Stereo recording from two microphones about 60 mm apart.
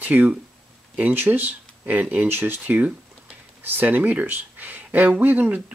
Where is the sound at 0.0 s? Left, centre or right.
Right.